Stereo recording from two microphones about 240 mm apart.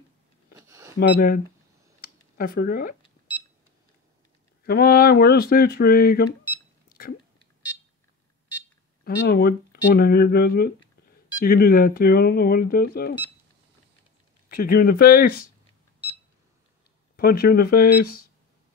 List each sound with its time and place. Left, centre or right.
0.6 s a sound: centre
0.9 s speech: left
2.0 s a sound: left
4.6 s speech: left
9.0 s speech: left
14.5 s speech: left
17.2 s speech: left